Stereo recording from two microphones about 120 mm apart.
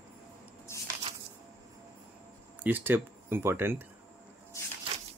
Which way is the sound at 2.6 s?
15° right (ahead or behind).